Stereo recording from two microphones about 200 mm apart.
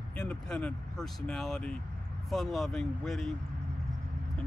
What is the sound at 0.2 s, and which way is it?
Speech, 5° left (ahead or behind).